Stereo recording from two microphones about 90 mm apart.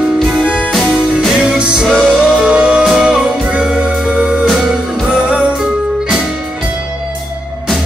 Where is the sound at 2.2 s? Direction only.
Centre (ahead or behind).